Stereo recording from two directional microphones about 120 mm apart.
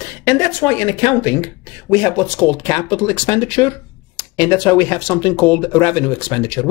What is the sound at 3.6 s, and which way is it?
Speech, 35° left (ahead or behind).